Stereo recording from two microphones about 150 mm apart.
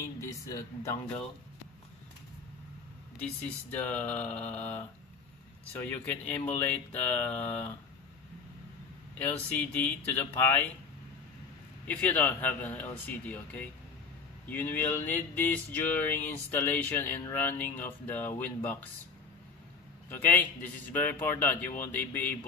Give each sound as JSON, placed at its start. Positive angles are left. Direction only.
{"t": 0.2, "sound": "speech", "side_deg": 20}
{"t": 3.2, "sound": "speech", "side_deg": 10}
{"t": 5.7, "sound": "speech", "side_deg": 10}
{"t": 9.2, "sound": "speech", "side_deg": 10}
{"t": 11.9, "sound": "speech", "side_deg": 10}
{"t": 20.1, "sound": "speech", "side_deg": 10}